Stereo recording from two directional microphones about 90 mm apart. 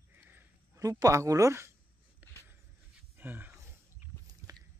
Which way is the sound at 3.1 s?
20° right (ahead or behind).